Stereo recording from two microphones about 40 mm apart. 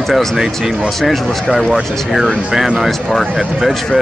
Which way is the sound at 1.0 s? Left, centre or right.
Centre.